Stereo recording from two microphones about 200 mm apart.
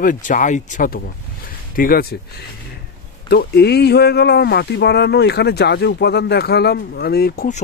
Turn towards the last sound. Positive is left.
turn(degrees=40)  # may be behind; listen again after turning